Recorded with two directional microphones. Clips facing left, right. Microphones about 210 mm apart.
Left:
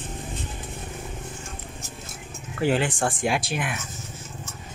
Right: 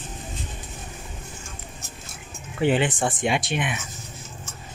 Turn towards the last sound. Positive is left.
turn(degrees=0)  # may be behind; listen again after turning